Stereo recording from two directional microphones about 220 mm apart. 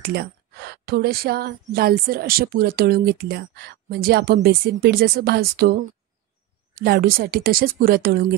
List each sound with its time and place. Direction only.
0.0 s a woman's voice: 45° right (ahead or behind)